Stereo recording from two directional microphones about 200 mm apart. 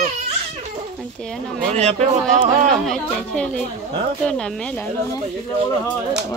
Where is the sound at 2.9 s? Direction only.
5° left (ahead or behind).